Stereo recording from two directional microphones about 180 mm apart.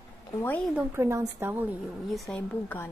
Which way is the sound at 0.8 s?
15° right (ahead or behind).